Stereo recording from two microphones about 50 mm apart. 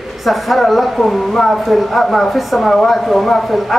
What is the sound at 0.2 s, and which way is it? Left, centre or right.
Speech, centre.